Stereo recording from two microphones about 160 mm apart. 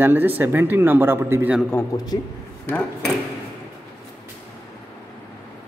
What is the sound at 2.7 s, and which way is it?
Speech, 10° left (ahead or behind).